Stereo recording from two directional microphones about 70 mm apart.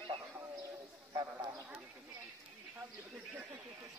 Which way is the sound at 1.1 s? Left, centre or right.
Right.